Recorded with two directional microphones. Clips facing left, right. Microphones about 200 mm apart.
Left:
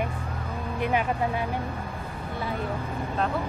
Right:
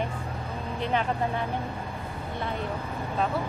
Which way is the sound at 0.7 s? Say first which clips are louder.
Left 2 dB; 10° left (ahead or behind).